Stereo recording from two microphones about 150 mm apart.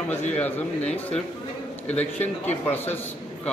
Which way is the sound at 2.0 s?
50° left (ahead or behind).